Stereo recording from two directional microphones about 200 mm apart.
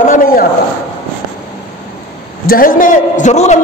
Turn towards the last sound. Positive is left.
turn(degrees=35)  # may be behind; listen again after turning